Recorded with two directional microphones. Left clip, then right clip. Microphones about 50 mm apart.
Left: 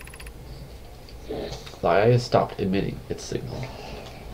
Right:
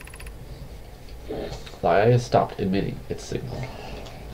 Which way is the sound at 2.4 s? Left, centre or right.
Centre.